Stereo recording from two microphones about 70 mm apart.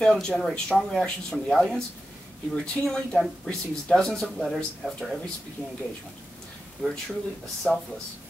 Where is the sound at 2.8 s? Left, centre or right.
Centre.